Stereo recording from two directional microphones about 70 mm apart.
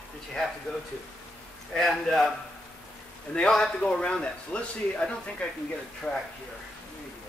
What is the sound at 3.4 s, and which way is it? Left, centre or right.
A man's voice, centre.